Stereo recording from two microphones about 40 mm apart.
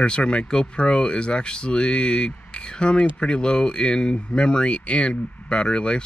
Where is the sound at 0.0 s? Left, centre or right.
Left.